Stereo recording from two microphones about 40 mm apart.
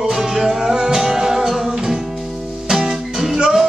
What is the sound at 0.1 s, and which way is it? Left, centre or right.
Music, centre.